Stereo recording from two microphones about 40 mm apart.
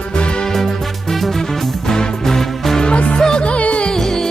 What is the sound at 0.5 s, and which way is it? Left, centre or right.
Music, centre.